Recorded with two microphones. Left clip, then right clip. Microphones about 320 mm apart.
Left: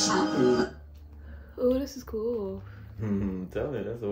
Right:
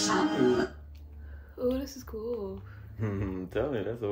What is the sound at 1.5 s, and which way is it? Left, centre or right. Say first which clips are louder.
Speech: left 5 dB; centre.